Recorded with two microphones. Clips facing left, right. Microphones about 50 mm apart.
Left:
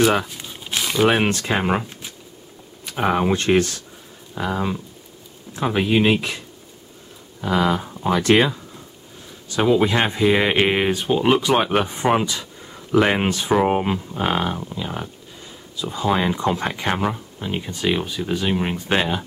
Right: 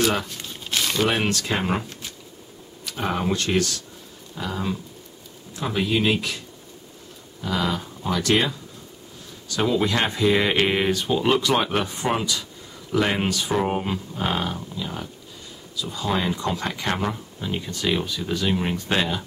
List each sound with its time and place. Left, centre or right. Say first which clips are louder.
0.0 s crumpling: left 5 dB; centre
1.0 s speech: left 8 dB; left
2.8 s speech: left 6 dB; left
7.4 s speech: left 5 dB; left
9.5 s speech: left 4 dB; left